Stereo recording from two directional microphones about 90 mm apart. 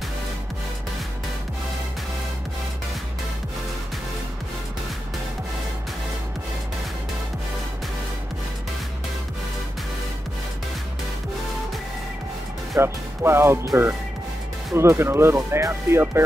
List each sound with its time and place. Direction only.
12.7 s speech: 30° right (ahead or behind)